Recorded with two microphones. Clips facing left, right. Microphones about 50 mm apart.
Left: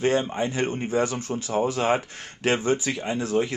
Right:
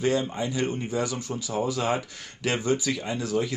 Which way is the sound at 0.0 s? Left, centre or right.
Left.